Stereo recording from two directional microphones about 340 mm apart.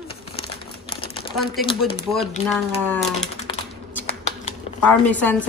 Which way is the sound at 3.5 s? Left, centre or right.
Centre.